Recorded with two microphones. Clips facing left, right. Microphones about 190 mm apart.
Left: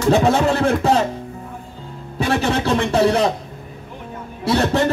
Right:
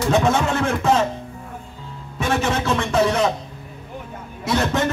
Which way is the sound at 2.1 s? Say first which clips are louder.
Left 2 dB; 35° left (ahead or behind).